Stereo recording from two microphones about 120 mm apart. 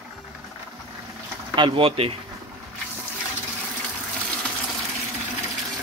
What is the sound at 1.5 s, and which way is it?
Speech, 45° right (ahead or behind).